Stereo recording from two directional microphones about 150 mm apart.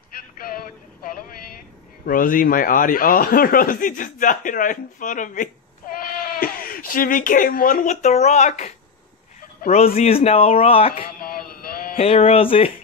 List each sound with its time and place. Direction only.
2.0 s a man's voice: 65° left (ahead or behind)
5.9 s sheep: 70° left (ahead or behind)
6.4 s a man's voice: 70° left (ahead or behind); by 8.7 s 50° left (ahead or behind)
9.9 s speech: 45° left (ahead or behind)
12.0 s speech: 45° left (ahead or behind)